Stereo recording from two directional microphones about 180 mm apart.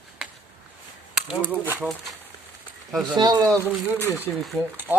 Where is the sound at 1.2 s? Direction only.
5° right (ahead or behind).